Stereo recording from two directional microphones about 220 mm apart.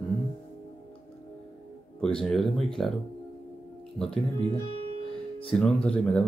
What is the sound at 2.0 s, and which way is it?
Speech, centre (ahead or behind).